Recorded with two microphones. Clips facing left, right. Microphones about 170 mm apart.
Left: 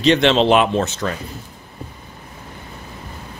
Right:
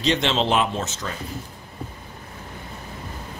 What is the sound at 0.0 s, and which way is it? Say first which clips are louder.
Speech: left 8 dB; 65° left (ahead or behind).